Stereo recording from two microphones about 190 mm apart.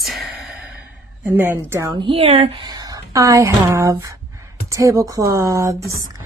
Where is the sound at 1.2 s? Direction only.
10° right (ahead or behind).